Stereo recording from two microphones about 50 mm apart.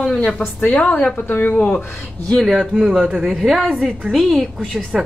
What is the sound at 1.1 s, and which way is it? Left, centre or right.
Speech, left.